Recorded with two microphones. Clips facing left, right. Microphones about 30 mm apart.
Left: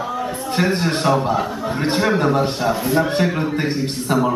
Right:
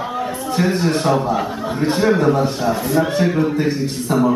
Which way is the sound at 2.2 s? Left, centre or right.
Left.